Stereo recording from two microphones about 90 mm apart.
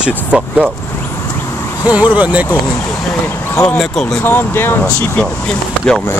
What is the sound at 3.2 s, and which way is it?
Speech, 25° left (ahead or behind).